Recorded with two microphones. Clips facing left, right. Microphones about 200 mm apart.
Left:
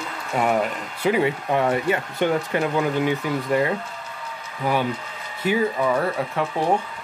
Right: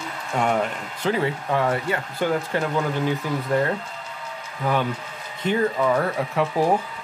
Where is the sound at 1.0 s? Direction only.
15° left (ahead or behind).